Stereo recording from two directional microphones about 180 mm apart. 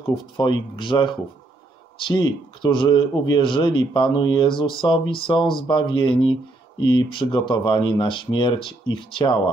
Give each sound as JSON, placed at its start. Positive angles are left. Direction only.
{"t": 0.4, "sound": "speech", "side_deg": 25}